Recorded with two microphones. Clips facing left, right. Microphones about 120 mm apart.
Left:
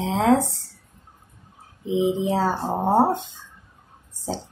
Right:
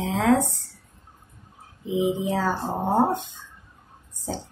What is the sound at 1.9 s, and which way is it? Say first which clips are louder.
A woman's voice: left 2 dB; 25° left (ahead or behind).